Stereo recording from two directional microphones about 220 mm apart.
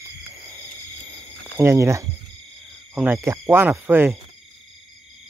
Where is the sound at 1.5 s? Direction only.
10° right (ahead or behind).